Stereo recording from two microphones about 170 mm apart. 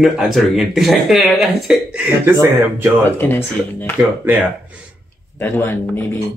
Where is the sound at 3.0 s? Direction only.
10° left (ahead or behind).